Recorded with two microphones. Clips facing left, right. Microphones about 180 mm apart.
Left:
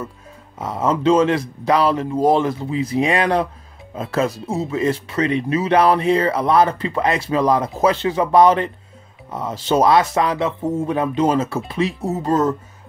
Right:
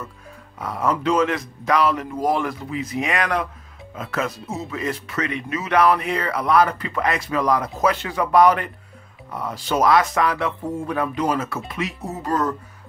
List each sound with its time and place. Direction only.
0.6 s speech: 20° left (ahead or behind)